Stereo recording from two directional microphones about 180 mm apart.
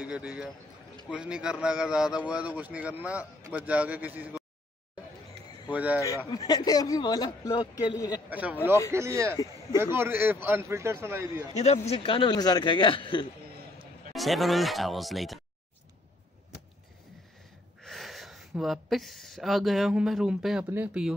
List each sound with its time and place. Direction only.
0.0 s a man's voice: 5° right (ahead or behind)
5.7 s a man's voice: 10° right (ahead or behind)
6.3 s a man's voice: 20° left (ahead or behind)
8.3 s a man's voice: 10° right (ahead or behind)
11.5 s a man's voice: 35° left (ahead or behind)
14.1 s speech: centre (ahead or behind)
17.8 s a man's voice: centre (ahead or behind)